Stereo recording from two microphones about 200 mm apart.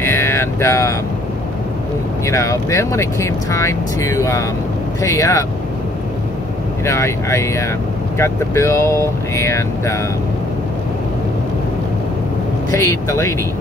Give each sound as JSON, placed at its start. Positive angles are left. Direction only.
{"t": 0.0, "sound": "mantra", "side_deg": 10}
{"t": 2.2, "sound": "speech", "side_deg": 15}
{"t": 6.8, "sound": "speech", "side_deg": 15}
{"t": 12.7, "sound": "speech", "side_deg": 15}